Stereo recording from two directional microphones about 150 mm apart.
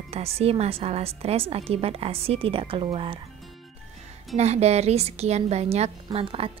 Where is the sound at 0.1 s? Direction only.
40° right (ahead or behind).